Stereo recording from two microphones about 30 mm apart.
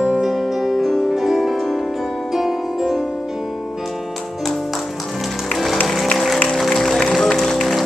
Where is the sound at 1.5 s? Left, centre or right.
Centre.